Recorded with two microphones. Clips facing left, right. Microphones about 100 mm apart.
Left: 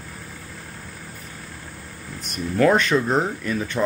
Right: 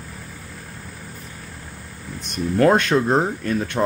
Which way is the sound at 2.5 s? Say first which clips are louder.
Right 1 dB; 50° right (ahead or behind).